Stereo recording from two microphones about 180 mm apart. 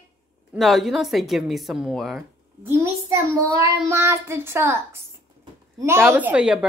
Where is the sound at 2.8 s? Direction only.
15° right (ahead or behind).